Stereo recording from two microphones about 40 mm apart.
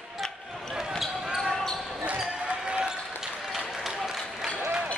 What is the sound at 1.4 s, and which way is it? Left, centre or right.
Basketball bounce, centre.